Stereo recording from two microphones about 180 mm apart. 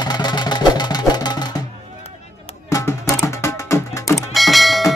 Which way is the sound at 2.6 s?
15° left (ahead or behind).